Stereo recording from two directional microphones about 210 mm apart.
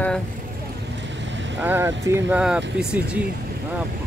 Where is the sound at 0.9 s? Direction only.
60° right (ahead or behind).